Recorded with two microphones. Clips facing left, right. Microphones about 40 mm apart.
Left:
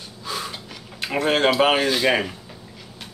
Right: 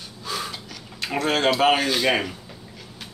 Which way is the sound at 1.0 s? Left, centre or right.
Left.